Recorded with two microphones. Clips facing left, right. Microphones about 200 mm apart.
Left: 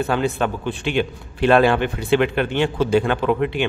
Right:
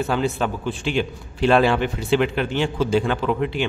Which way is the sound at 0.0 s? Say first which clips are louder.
Left 2 dB; 60° left (ahead or behind).